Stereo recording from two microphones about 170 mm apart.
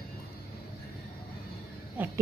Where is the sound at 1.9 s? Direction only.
10° right (ahead or behind).